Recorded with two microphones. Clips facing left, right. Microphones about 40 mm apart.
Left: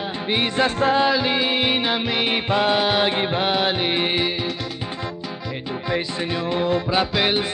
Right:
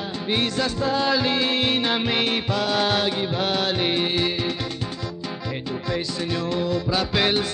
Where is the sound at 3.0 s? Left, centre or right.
Left.